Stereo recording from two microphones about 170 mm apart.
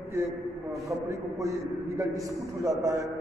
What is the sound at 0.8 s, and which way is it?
A man's voice, 20° right (ahead or behind).